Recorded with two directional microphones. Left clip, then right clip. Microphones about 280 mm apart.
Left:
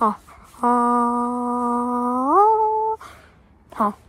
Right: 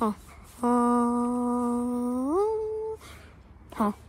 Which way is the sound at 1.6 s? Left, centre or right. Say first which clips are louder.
Left 8 dB; centre.